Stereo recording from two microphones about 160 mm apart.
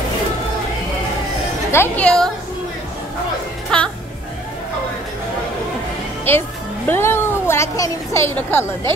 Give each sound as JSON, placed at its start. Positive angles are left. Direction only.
{"t": 1.7, "sound": "speech", "side_deg": 10}
{"t": 3.7, "sound": "speech", "side_deg": 5}
{"t": 6.3, "sound": "speech", "side_deg": 10}